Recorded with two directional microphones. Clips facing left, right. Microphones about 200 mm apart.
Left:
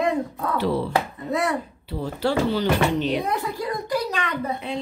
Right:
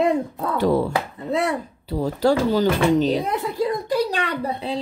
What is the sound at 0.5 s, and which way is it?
Speech, 45° right (ahead or behind).